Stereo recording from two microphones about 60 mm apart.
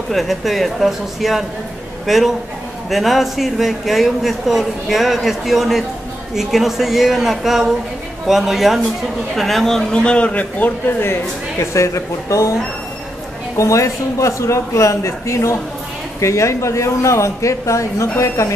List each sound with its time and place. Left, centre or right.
0.1 s a man's voice: centre; by 11.1 s left
11.6 s speech: left
13.6 s speech: left